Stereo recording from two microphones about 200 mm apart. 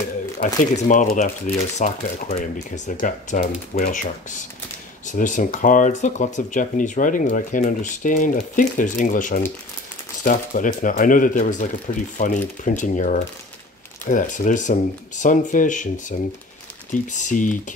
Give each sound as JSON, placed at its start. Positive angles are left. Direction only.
{"t": 0.4, "sound": "speech", "side_deg": 40}